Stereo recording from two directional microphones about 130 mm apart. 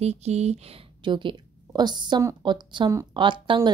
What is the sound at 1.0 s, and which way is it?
A woman's voice, 40° right (ahead or behind).